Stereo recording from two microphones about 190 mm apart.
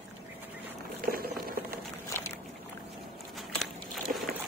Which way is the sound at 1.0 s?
50° right (ahead or behind).